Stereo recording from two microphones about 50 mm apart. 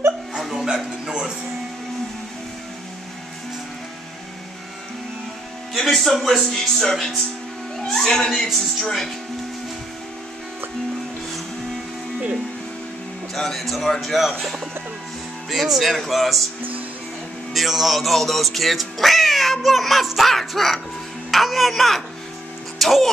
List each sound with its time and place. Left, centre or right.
0.4 s a sound: centre
1.0 s television: centre
5.7 s speech: centre
13.3 s speech: centre
17.6 s speech: centre